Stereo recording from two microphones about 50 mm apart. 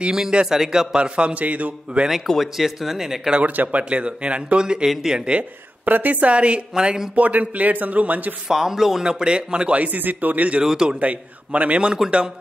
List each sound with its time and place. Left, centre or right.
0.0 s speech: centre
2.3 s speech: centre
3.3 s speech: right
5.9 s speech: right; by 7.2 s centre
7.2 s speech: right
8.5 s speech: centre; by 10.6 s right
10.6 s speech: centre
11.0 s speech: right